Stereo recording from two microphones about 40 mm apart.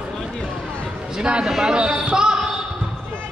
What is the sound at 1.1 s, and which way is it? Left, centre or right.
Speech, right.